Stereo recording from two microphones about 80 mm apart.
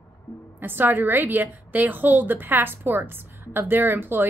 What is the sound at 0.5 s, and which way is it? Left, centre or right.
A woman's voice, right.